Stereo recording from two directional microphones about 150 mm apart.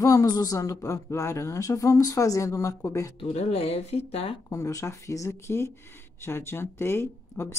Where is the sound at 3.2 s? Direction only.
40° left (ahead or behind).